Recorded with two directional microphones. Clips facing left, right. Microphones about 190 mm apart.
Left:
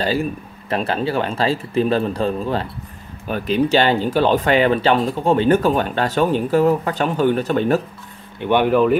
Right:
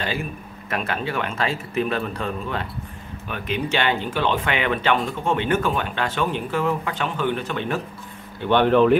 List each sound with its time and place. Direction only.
0.0 s speech: 35° left (ahead or behind)
8.4 s speech: 10° left (ahead or behind)